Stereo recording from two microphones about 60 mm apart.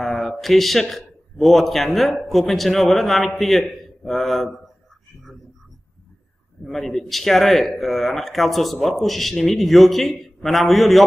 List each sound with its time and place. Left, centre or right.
0.0 s a man's voice: centre
6.6 s speech: centre